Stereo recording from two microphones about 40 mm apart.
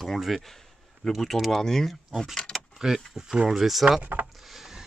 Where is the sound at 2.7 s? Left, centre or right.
Centre.